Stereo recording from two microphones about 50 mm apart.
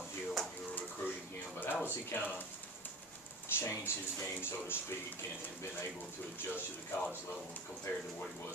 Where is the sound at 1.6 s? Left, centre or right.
Left.